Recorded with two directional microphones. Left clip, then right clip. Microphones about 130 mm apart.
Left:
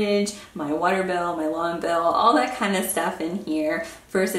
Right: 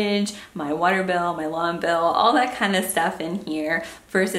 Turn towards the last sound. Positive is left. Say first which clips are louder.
# right 1 dB
turn(degrees=-20)  # may be behind; listen again after turning